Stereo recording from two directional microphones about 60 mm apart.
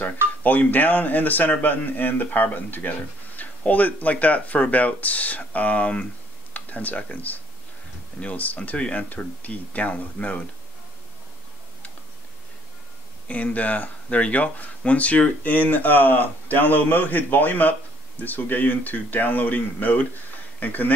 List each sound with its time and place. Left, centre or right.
0.0 s speech: left
13.3 s speech: left